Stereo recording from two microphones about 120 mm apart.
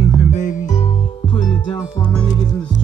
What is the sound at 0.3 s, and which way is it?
Music, 90° left.